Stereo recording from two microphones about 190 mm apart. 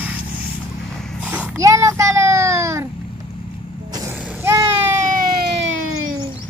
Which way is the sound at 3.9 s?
15° right (ahead or behind).